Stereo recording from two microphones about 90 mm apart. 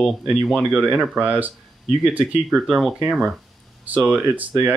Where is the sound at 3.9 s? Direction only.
15° right (ahead or behind).